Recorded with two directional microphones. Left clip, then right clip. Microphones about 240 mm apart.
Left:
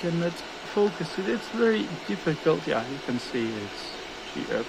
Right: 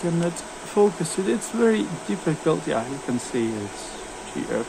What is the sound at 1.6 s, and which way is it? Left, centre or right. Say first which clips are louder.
Speech: right 4 dB; centre.